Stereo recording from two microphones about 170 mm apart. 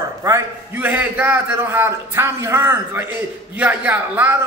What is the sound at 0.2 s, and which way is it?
A man's voice, 15° right (ahead or behind).